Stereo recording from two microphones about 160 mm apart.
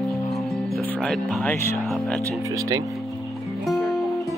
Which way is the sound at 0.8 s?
10° left (ahead or behind).